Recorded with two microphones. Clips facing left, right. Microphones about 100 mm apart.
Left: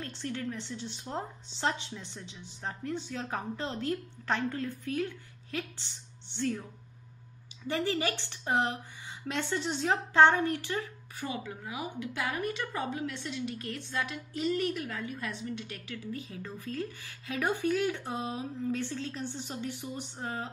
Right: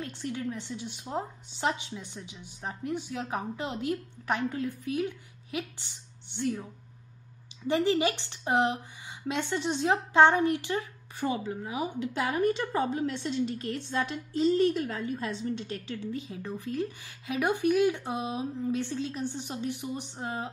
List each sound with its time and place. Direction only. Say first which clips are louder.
0.0 s a woman's voice: right 2 dB; 15° right (ahead or behind)
7.6 s a woman's voice: right 5 dB; 20° right (ahead or behind)